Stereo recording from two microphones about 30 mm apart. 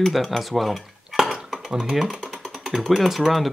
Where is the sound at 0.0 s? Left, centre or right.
Centre.